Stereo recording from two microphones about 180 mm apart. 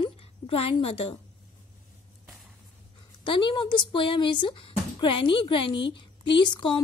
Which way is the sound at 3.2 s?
25° left (ahead or behind).